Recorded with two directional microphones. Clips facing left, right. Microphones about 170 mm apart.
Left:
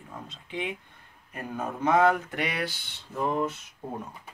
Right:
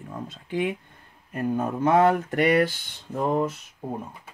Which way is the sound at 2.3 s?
50° right (ahead or behind).